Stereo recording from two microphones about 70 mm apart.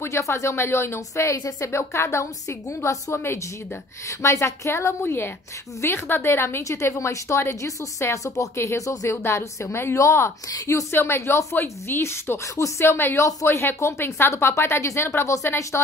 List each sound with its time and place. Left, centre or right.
0.0 s a woman's voice: left
10.9 s a woman's voice: left